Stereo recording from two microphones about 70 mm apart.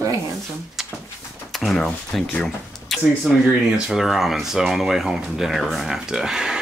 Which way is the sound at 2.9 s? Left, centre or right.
Centre.